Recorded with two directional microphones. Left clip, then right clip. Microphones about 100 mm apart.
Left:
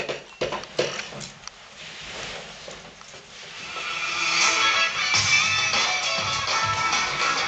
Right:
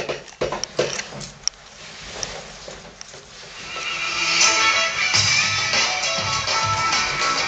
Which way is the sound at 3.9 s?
20° right (ahead or behind).